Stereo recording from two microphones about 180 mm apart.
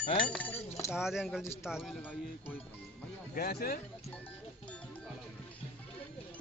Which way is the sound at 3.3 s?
55° left (ahead or behind).